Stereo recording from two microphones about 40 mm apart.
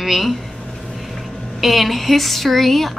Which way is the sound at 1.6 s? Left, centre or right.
Centre.